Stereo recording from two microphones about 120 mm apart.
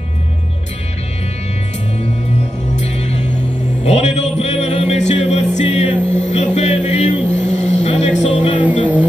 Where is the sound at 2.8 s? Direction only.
65° left (ahead or behind).